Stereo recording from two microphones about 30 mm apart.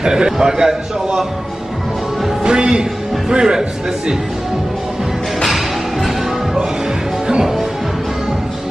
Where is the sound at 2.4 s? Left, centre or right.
Right.